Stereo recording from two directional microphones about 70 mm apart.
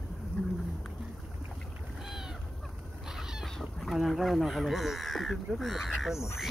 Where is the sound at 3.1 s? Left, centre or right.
Centre.